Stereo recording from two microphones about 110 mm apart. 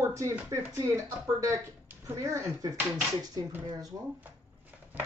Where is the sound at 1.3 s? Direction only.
25° right (ahead or behind).